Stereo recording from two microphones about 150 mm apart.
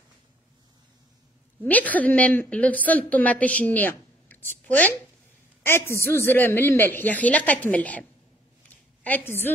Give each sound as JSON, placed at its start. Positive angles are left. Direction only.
{"t": 1.6, "sound": "a woman's voice", "side_deg": 10}
{"t": 9.0, "sound": "a woman's voice", "side_deg": 15}